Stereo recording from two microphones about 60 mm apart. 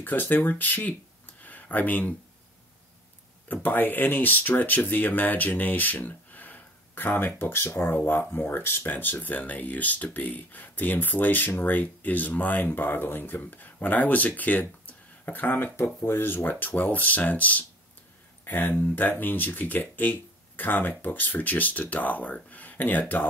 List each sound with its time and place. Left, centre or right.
0.0 s speech: left
3.6 s speech: left
7.2 s speech: left
15.8 s speech: left
16.2 s speech: left